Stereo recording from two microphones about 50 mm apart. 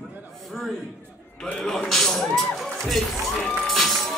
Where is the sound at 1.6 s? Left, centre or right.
Centre.